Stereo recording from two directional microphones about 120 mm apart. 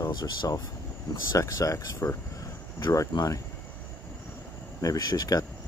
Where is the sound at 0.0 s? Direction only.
35° left (ahead or behind).